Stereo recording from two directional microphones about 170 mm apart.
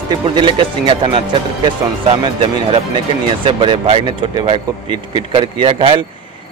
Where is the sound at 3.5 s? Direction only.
30° right (ahead or behind).